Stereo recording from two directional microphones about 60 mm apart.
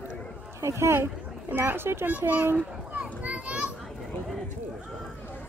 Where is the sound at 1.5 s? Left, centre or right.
Right.